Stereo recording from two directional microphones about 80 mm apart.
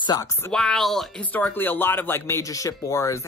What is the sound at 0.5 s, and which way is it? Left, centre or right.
Speech, centre.